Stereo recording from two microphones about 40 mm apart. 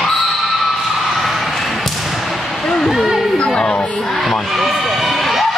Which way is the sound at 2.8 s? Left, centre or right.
Centre.